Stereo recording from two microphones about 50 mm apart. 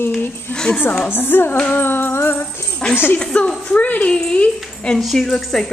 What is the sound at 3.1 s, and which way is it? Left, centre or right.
Speech, centre.